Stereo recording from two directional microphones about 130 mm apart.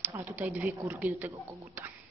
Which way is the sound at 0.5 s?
10° right (ahead or behind).